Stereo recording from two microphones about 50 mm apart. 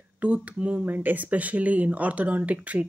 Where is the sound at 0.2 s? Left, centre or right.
Right.